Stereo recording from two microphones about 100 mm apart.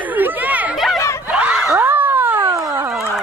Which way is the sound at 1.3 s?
15° right (ahead or behind).